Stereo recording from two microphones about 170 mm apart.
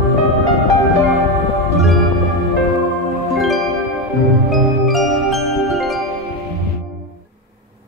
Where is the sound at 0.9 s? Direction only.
Centre (ahead or behind).